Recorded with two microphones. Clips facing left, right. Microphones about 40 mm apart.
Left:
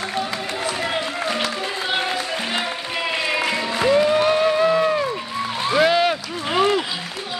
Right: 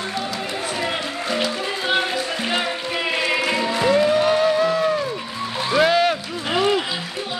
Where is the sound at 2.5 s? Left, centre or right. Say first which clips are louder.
Right 4 dB; centre.